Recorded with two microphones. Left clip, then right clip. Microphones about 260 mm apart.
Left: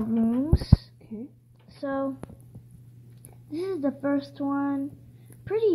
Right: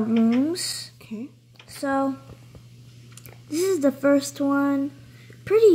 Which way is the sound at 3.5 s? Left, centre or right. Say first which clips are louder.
Right 7 dB; centre.